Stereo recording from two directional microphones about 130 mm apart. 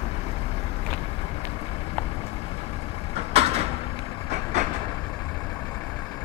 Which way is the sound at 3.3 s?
50° right (ahead or behind).